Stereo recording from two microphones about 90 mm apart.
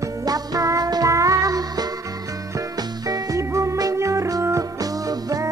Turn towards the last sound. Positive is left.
turn(degrees=-45)  # may be behind; listen again after turning